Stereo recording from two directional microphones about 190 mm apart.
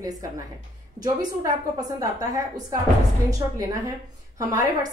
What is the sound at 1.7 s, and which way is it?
A woman's voice, 20° right (ahead or behind).